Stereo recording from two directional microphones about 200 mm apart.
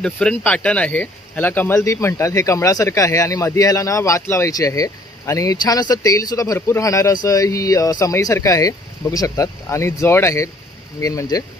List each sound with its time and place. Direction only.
0.0 s speech: 5° left (ahead or behind)